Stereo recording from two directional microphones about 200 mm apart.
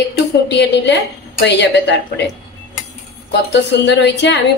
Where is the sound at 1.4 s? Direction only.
60° left (ahead or behind).